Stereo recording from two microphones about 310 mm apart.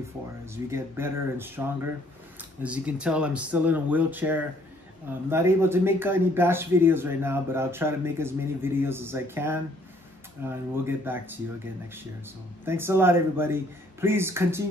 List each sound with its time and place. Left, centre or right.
0.7 s speech: centre